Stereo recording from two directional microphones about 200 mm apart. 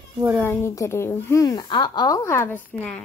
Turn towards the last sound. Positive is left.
turn(degrees=5)  # may be behind; listen again after turning